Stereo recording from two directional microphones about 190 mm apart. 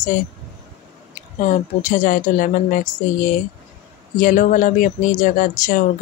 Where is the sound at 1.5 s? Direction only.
40° left (ahead or behind).